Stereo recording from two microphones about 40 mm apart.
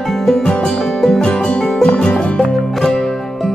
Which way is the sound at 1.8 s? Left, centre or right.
Left.